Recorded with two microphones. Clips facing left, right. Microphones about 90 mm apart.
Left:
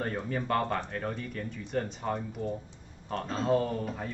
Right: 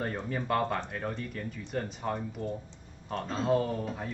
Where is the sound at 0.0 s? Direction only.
Centre (ahead or behind).